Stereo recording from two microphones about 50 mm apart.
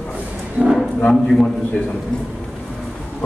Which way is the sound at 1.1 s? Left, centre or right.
Centre.